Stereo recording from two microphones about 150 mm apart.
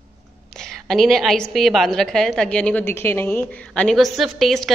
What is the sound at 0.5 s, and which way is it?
A woman's voice, centre (ahead or behind).